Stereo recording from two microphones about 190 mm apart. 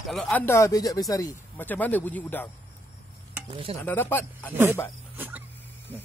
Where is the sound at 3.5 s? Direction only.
30° right (ahead or behind).